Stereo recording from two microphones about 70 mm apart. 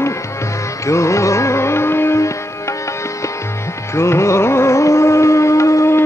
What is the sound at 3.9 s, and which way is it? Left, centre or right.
Music, left.